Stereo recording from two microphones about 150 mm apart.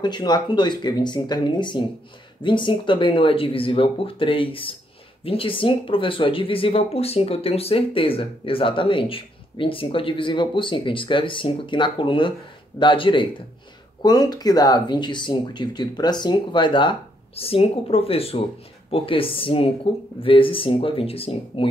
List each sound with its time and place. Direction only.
0.0 s speech: 30° left (ahead or behind)